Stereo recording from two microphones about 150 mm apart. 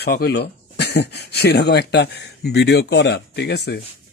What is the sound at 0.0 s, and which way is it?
Speech, 90° left.